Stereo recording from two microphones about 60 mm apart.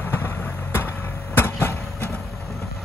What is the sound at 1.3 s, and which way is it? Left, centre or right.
Vehicle, left.